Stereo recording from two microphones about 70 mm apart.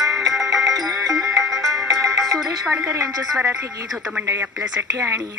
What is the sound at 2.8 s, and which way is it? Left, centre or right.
Speech, right.